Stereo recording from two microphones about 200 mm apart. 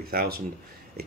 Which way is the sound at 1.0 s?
50° right (ahead or behind).